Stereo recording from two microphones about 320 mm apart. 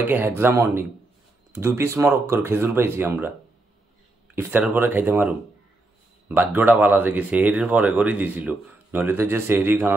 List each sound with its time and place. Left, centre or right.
0.0 s speech: centre
4.4 s speech: centre